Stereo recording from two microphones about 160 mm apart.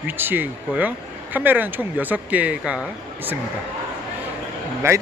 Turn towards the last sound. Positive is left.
turn(degrees=-15)  # may be behind; listen again after turning